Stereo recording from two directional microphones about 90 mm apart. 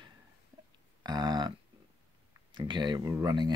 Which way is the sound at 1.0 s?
50° right (ahead or behind).